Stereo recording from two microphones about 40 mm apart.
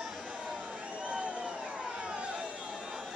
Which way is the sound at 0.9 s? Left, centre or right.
Right.